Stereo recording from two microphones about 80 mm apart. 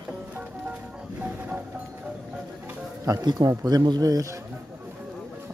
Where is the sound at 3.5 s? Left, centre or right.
Right.